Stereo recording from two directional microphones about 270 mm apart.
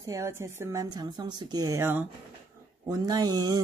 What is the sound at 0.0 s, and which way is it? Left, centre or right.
Speech, centre.